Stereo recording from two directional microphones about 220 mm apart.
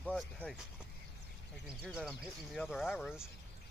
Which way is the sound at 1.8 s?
Centre (ahead or behind).